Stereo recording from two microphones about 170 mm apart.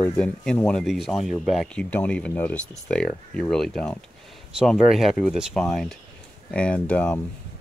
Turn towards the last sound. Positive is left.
turn(degrees=10)  # may be behind; listen again after turning